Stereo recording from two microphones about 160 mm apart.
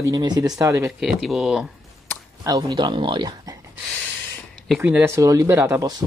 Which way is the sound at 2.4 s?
25° right (ahead or behind).